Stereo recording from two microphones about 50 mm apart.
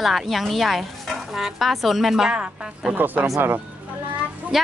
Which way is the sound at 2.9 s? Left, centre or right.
Right.